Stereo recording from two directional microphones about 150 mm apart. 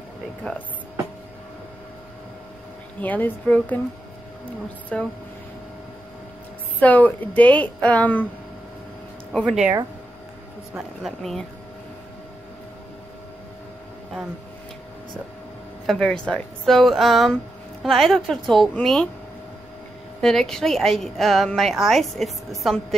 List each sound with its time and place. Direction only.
0.4 s a woman's voice: 5° left (ahead or behind)
3.0 s a woman's voice: 10° left (ahead or behind)
4.9 s a woman's voice: 5° left (ahead or behind)
6.8 s a woman's voice: 10° left (ahead or behind)
9.4 s a woman's voice: 5° right (ahead or behind)
11.0 s a woman's voice: centre (ahead or behind)
15.9 s a woman's voice: 5° left (ahead or behind)
20.2 s a woman's voice: centre (ahead or behind)